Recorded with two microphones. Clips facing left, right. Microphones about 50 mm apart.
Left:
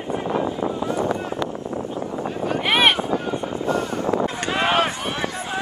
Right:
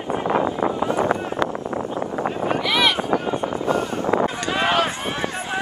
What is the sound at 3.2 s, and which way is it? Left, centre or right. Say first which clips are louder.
Vehicle: right 2 dB; right.